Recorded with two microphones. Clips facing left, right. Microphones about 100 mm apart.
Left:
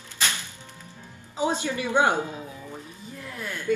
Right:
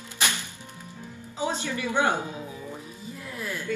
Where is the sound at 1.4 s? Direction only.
15° left (ahead or behind).